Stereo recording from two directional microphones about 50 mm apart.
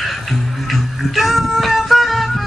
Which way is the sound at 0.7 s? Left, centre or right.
Centre.